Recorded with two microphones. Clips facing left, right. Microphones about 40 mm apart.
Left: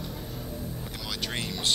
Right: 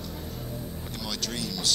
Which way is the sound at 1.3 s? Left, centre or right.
Left.